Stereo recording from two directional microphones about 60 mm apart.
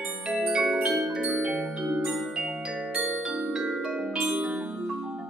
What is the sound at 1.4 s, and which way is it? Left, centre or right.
Music, centre.